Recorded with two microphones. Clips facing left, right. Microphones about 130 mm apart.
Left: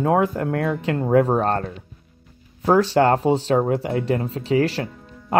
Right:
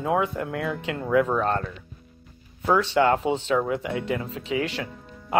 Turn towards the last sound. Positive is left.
turn(degrees=40)  # may be behind; listen again after turning